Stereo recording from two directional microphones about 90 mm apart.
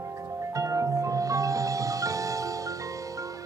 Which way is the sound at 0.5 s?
35° right (ahead or behind).